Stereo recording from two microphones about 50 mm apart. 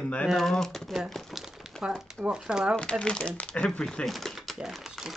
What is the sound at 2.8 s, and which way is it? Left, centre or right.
Speech, left.